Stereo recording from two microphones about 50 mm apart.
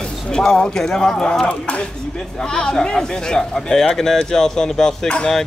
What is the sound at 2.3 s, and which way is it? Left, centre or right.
A man's voice, centre.